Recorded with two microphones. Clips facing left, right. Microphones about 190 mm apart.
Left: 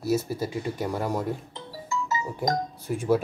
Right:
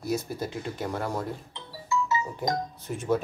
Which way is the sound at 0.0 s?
5° left (ahead or behind).